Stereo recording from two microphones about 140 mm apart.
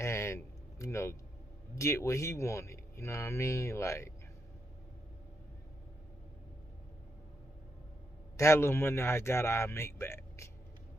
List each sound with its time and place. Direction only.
0.0 s a sound: 20° left (ahead or behind)
1.8 s a man's voice: 20° left (ahead or behind)
8.4 s a man's voice: 20° left (ahead or behind)